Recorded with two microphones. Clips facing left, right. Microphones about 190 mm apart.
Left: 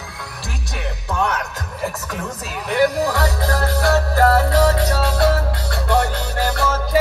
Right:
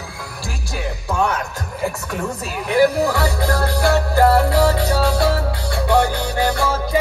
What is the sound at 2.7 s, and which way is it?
Music, centre (ahead or behind).